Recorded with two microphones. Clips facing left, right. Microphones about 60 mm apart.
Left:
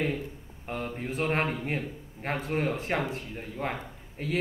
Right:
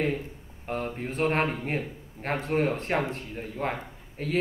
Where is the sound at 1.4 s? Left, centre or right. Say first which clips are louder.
Right 2 dB; right.